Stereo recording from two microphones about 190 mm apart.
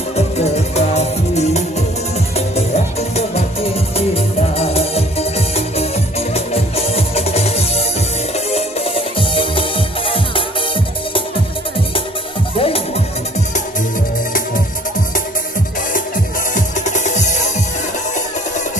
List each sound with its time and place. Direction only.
0.1 s music: 35° left (ahead or behind)
12.5 s music: 30° left (ahead or behind)
16.5 s music: 40° left (ahead or behind)